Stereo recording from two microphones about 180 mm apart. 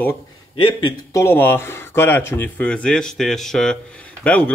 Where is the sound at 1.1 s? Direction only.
15° left (ahead or behind).